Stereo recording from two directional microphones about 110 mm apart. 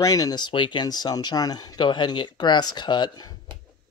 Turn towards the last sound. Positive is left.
turn(degrees=40)  # may be behind; listen again after turning